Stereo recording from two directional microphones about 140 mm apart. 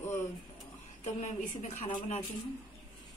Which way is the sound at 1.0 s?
55° left (ahead or behind).